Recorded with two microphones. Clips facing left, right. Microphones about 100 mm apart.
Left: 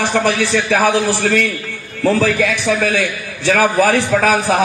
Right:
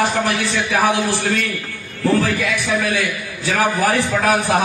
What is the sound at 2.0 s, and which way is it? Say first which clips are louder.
A man's voice: left 3 dB; 90° left.